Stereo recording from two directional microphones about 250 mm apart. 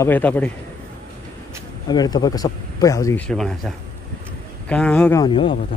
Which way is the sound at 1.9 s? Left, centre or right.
Centre.